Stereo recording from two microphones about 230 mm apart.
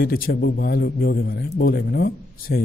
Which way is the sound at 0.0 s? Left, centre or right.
Left.